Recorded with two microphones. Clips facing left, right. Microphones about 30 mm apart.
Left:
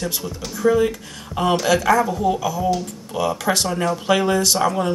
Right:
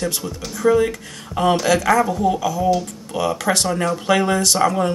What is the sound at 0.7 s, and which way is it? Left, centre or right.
Speech, centre.